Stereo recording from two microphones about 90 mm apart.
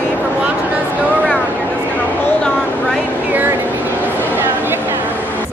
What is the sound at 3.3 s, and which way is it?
Vehicle, 20° right (ahead or behind).